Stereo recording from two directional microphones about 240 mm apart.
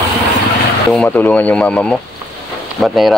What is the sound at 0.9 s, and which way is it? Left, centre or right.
Speech, centre.